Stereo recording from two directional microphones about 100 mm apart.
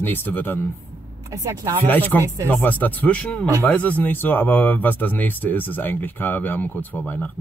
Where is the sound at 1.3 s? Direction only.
35° right (ahead or behind).